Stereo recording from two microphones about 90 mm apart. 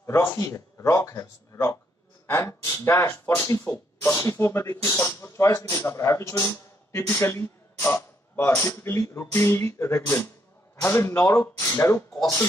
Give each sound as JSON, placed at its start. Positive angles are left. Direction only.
{"t": 0.0, "sound": "speech", "side_deg": 35}